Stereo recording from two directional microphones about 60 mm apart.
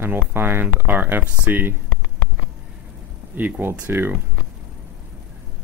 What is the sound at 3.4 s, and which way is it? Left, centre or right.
Speech, right.